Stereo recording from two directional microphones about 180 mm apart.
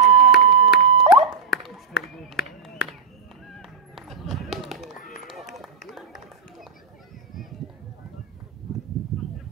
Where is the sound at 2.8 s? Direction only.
60° left (ahead or behind).